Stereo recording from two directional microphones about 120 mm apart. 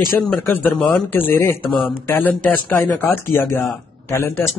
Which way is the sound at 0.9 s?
15° left (ahead or behind).